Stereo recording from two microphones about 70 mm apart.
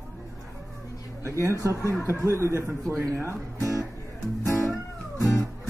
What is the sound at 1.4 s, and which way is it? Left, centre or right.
Speech, right.